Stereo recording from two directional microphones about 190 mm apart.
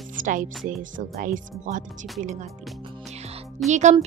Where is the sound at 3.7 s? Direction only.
40° right (ahead or behind).